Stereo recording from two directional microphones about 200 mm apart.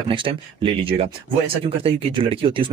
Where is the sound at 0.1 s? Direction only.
25° right (ahead or behind).